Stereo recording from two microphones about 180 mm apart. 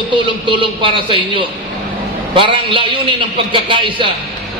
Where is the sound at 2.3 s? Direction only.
30° right (ahead or behind).